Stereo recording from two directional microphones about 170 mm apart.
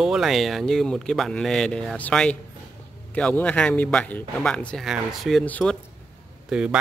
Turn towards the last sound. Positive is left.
turn(degrees=-5)  # may be behind; listen again after turning